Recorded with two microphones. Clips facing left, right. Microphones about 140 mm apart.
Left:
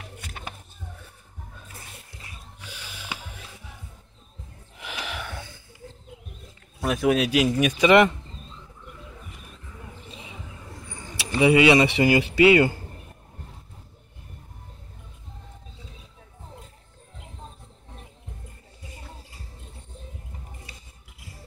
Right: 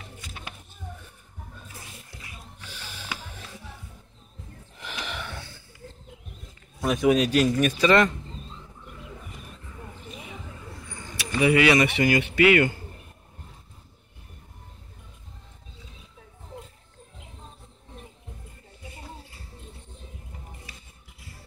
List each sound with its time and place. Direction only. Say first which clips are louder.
0.0 s music: left 2 dB; 60° left (ahead or behind)
2.6 s a sound: left 1 dB; 10° left (ahead or behind)
4.7 s gasp: left 1 dB; 5° left (ahead or behind)
6.8 s speech: right 1 dB; centre (ahead or behind); by 8.1 s 20° left (ahead or behind)
11.1 s speech: left 3 dB; 25° left (ahead or behind)